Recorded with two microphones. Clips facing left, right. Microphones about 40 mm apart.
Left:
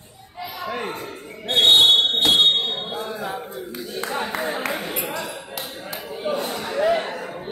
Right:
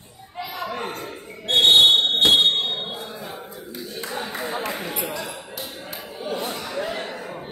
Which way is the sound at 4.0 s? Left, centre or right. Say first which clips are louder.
Left 4 dB; left.